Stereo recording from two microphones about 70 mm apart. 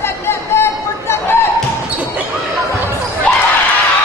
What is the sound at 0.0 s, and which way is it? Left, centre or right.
Chatter, left.